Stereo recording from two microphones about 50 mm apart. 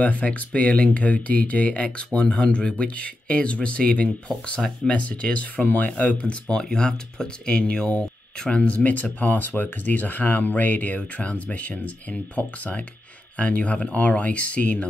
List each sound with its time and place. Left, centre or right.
0.0 s speech: left
6.5 s speech: centre